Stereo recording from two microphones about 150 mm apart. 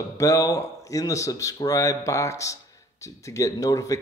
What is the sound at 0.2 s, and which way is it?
Speech, 20° left (ahead or behind).